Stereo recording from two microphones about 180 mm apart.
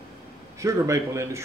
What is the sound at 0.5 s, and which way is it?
Speech, 15° right (ahead or behind).